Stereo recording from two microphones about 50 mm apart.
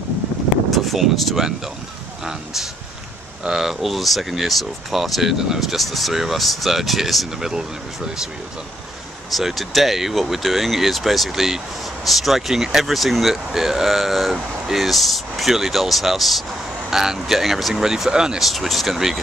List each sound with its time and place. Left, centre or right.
0.7 s speech: centre
9.3 s speech: centre
18.4 s speech: centre